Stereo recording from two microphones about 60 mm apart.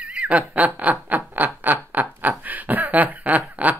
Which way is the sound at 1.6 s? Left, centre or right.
Right.